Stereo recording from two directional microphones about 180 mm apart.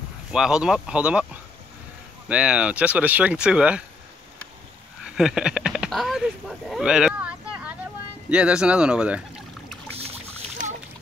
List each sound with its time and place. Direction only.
0.3 s speech: 5° right (ahead or behind)
5.0 s speech: 5° right (ahead or behind)
6.7 s a sound: 5° right (ahead or behind)
8.3 s speech: 5° right (ahead or behind)
9.9 s boat: 35° right (ahead or behind)